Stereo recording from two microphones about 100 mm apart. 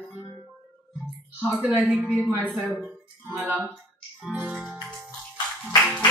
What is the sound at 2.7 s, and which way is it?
Music, 10° right (ahead or behind).